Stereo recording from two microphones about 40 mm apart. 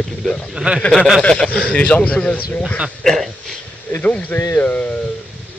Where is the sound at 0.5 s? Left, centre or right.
Right.